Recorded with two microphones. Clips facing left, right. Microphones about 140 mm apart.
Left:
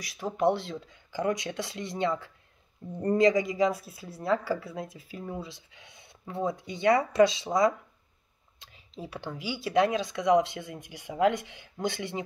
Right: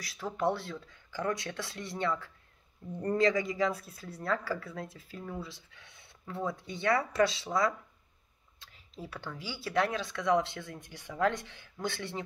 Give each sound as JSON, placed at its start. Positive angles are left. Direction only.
{"t": 0.0, "sound": "speech", "side_deg": 15}
{"t": 8.6, "sound": "a sound", "side_deg": 15}
{"t": 9.0, "sound": "speech", "side_deg": 15}